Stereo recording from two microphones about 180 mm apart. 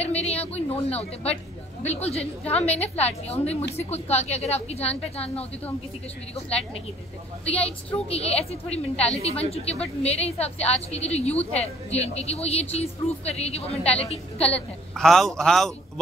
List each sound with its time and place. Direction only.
0.0 s speech: 35° left (ahead or behind)
2.5 s a woman's voice: 35° left (ahead or behind)
14.5 s a man's voice: centre (ahead or behind)